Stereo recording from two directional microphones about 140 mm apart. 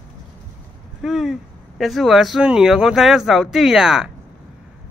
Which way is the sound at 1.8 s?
Centre (ahead or behind).